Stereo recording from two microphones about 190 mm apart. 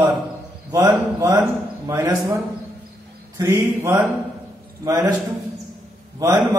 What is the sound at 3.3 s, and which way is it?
Speech, 15° right (ahead or behind).